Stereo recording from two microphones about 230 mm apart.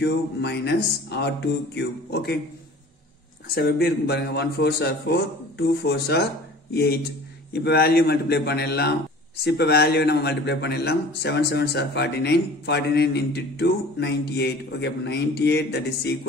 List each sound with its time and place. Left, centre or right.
0.0 s a man's voice: left
3.5 s a man's voice: left